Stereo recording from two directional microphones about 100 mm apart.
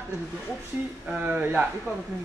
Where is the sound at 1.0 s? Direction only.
15° right (ahead or behind).